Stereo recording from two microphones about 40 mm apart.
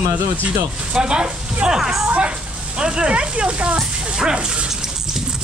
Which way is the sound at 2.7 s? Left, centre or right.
Right.